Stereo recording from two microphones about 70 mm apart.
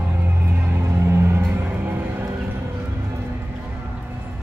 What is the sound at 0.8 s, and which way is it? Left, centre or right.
Car, right.